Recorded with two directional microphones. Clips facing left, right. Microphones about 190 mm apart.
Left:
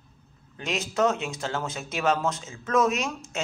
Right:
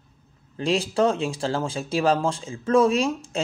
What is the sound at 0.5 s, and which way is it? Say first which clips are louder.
Speech: right 6 dB; 30° right (ahead or behind).